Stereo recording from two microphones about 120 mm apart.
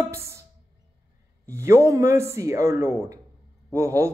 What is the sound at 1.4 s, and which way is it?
Speech, 20° right (ahead or behind).